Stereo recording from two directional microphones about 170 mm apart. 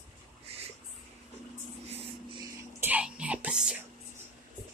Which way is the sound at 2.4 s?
10° right (ahead or behind).